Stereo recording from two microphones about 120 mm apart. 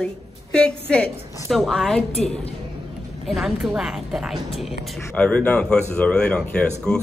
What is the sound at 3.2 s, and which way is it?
A woman's voice, centre (ahead or behind).